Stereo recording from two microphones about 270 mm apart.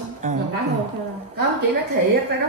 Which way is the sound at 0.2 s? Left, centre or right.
Right.